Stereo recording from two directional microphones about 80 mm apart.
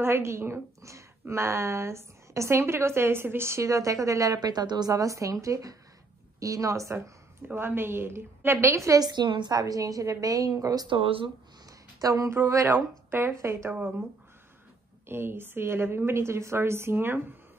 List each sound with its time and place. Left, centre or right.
0.0 s a woman's voice: right
7.4 s a woman's voice: right
9.0 s a woman's voice: right
10.9 s speech: right
12.0 s a woman's voice: right
12.4 s a woman's voice: right
15.0 s a woman's voice: right